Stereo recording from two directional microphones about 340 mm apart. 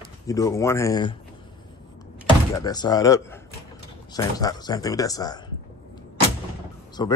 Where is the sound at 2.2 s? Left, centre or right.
Centre.